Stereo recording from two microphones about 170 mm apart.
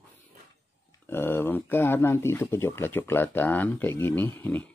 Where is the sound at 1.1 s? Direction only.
15° left (ahead or behind).